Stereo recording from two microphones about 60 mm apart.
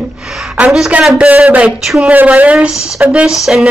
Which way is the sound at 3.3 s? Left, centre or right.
Centre.